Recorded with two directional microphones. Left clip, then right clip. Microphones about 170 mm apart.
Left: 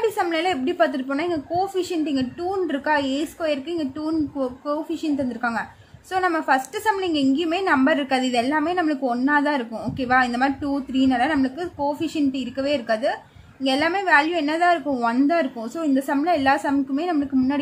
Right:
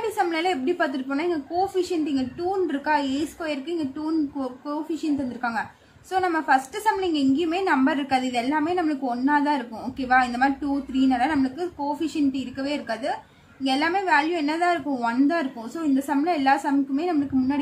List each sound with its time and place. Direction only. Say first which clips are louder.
0.0 s a woman's voice: left 2 dB; 35° left (ahead or behind)